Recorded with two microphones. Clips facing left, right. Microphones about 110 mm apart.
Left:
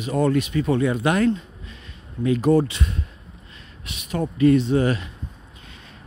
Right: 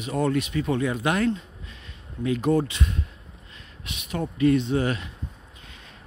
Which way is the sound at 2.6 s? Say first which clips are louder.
Left 1 dB; 35° left (ahead or behind).